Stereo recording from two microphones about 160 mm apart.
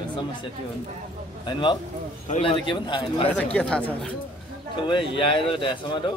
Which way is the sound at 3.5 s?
5° left (ahead or behind).